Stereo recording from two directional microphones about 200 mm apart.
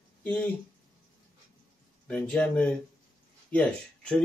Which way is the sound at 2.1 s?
5° left (ahead or behind).